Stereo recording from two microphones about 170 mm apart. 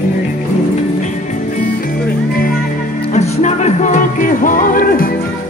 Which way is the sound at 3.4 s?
45° left (ahead or behind).